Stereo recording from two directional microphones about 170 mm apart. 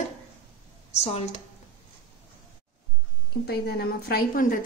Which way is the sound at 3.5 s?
70° left (ahead or behind).